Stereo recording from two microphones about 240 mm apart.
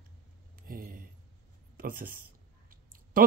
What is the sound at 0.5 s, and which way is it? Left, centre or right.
Speech, right.